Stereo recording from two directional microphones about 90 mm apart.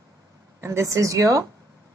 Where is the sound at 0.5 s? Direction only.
30° right (ahead or behind).